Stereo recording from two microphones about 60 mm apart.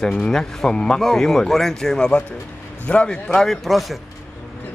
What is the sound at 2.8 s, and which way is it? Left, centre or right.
Speech, centre.